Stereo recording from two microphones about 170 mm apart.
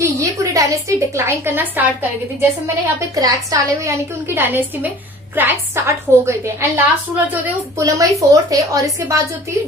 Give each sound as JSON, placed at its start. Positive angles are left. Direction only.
{"t": 0.0, "sound": "a woman's voice", "side_deg": -20}
{"t": 3.2, "sound": "a woman's voice", "side_deg": -20}